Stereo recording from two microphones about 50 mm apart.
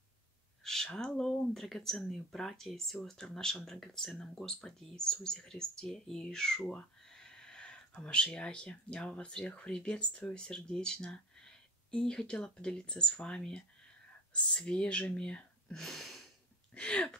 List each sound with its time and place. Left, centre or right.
0.9 s speech: centre
15.7 s a sound: centre
16.7 s speech: centre